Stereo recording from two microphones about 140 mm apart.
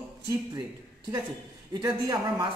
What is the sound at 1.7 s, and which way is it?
Speech, 25° right (ahead or behind).